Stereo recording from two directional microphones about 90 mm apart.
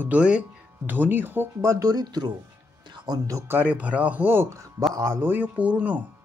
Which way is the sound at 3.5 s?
20° right (ahead or behind).